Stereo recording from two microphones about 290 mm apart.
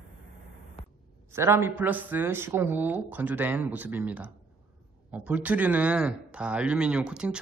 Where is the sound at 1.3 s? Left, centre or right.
Centre.